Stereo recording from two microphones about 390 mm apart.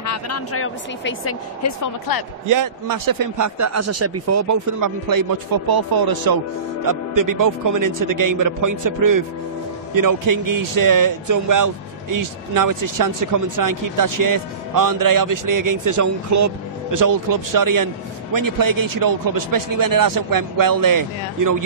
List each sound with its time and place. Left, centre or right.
0.0 s speech: left
1.8 s speech: left
2.4 s a man's voice: right
6.9 s a man's voice: right